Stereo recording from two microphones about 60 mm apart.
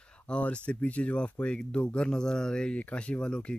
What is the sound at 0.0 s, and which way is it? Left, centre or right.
Speech, centre.